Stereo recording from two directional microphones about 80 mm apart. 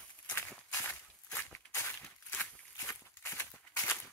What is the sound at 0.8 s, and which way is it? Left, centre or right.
Walk, left.